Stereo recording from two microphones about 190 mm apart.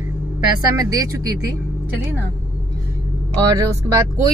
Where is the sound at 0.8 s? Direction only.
20° right (ahead or behind).